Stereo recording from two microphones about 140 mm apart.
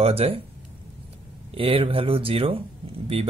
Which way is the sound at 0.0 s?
45° right (ahead or behind).